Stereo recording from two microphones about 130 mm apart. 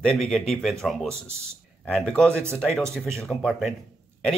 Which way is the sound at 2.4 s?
15° right (ahead or behind).